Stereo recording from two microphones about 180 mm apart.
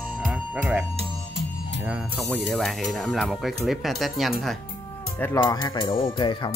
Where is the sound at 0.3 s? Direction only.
5° right (ahead or behind).